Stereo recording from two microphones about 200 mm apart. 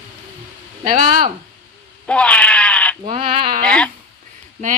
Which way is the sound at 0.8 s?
45° right (ahead or behind).